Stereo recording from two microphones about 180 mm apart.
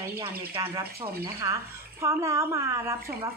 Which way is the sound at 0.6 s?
15° right (ahead or behind).